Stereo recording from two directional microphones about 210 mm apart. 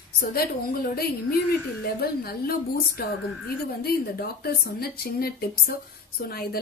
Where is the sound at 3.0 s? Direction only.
45° left (ahead or behind).